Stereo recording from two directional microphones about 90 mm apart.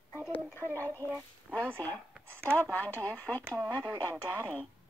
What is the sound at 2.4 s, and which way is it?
Speech, 25° right (ahead or behind).